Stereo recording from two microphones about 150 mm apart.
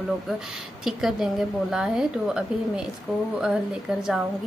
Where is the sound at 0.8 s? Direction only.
5° right (ahead or behind).